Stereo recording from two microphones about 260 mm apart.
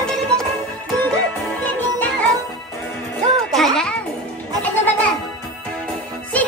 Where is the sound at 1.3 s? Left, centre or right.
Centre.